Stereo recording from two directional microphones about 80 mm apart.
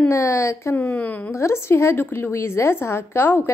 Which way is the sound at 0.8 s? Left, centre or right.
Centre.